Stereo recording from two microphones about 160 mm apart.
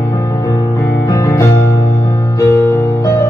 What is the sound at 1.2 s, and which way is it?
Music, 15° left (ahead or behind).